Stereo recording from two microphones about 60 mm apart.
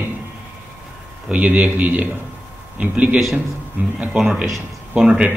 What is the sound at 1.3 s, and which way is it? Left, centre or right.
A man's voice, right.